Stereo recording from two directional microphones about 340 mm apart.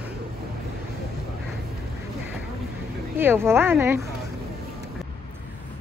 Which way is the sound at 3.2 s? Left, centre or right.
Centre.